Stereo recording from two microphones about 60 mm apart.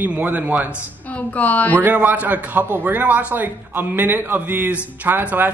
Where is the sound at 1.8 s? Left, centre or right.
Right.